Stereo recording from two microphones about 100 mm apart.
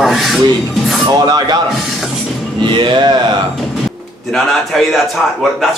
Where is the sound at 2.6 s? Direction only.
50° right (ahead or behind).